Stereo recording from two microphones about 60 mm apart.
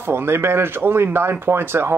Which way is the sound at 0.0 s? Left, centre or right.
Right.